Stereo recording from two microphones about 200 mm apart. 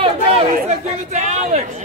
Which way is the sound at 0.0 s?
30° right (ahead or behind).